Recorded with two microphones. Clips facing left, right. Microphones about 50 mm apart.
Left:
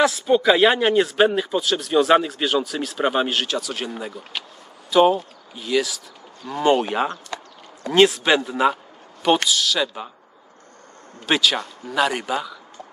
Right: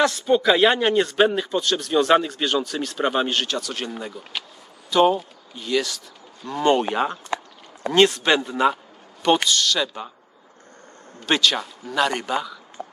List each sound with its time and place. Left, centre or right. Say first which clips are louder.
0.0 s speech: left 1 dB; centre
11.2 s speech: left 1 dB; centre
12.8 s a sound: right 7 dB; right